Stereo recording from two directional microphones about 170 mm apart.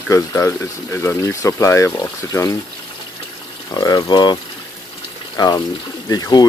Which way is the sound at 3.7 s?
25° left (ahead or behind).